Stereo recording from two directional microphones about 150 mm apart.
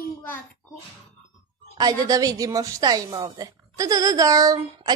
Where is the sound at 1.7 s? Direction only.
25° right (ahead or behind).